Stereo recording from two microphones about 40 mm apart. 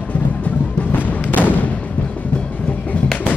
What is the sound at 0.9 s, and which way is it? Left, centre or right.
Music, left.